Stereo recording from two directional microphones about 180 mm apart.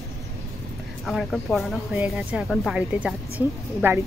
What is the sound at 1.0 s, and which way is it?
A woman's voice, centre (ahead or behind).